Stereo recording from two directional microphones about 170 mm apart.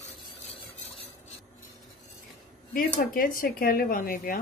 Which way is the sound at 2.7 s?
55° left (ahead or behind).